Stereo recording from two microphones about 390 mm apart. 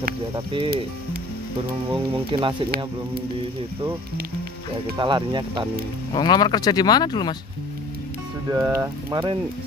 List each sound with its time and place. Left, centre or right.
0.0 s music: centre
1.9 s music: centre
4.9 s music: centre
6.1 s speech: centre
8.5 s music: centre